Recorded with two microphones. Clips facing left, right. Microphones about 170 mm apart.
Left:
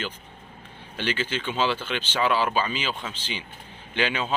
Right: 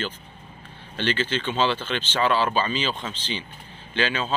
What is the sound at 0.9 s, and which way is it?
A man's voice, 10° left (ahead or behind).